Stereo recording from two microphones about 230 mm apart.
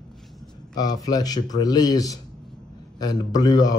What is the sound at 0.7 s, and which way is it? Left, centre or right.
Speech, centre.